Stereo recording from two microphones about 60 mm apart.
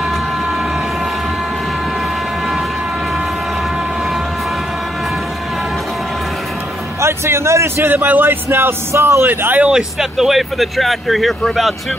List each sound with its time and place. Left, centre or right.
7.0 s a man's voice: right
8.9 s a man's voice: right
9.6 s speech: centre